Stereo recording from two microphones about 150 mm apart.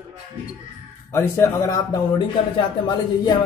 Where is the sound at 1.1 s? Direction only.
20° left (ahead or behind).